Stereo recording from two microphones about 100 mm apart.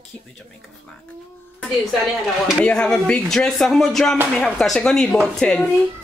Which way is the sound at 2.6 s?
10° left (ahead or behind).